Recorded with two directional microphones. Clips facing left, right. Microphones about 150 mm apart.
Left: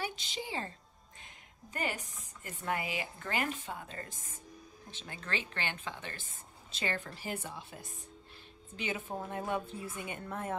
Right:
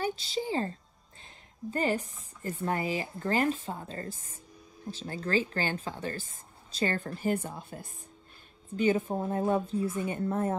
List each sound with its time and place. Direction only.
0.0 s a woman's voice: 35° right (ahead or behind)
1.2 s a sound: 35° right (ahead or behind)
2.4 s speech: 35° right (ahead or behind)